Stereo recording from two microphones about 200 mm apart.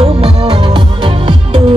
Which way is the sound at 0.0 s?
25° right (ahead or behind).